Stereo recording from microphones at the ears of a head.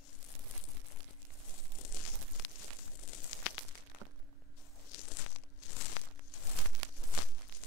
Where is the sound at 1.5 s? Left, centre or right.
Left.